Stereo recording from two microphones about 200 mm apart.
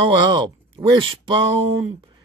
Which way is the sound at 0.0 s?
20° right (ahead or behind).